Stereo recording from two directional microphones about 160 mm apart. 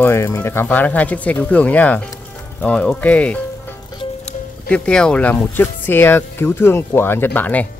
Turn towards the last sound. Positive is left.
turn(degrees=10)  # may be behind; listen again after turning